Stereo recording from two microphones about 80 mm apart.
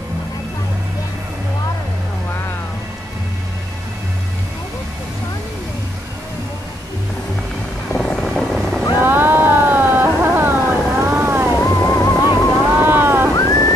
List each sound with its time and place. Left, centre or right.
7.9 s vehicle: centre
8.9 s a sound: right
11.0 s vehicle: right
11.7 s music: left
12.2 s boat: right
13.3 s a sound: left